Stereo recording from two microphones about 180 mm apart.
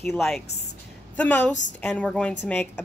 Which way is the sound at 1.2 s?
10° left (ahead or behind).